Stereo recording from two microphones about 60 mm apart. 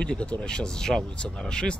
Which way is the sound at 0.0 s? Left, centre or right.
Centre.